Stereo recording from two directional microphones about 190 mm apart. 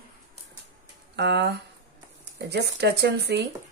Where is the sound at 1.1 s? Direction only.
65° right (ahead or behind).